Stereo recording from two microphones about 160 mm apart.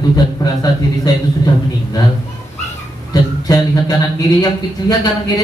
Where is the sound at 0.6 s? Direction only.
25° left (ahead or behind).